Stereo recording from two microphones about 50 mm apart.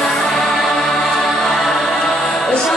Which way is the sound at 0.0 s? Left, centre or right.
Centre.